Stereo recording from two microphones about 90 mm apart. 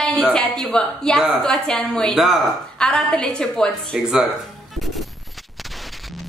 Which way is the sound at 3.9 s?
5° right (ahead or behind).